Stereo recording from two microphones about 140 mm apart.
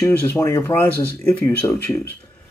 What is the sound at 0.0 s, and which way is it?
Speech, 20° left (ahead or behind).